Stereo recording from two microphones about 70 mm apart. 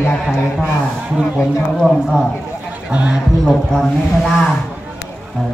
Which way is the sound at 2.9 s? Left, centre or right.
Centre.